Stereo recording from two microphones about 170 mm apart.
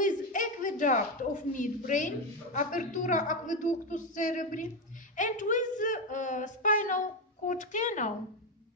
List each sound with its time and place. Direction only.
0.0 s a woman's voice: 50° left (ahead or behind)